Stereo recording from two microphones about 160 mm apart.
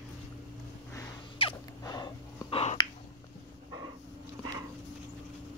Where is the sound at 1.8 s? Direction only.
25° left (ahead or behind).